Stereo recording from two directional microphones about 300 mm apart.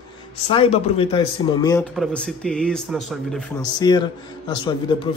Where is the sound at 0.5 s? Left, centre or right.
Centre.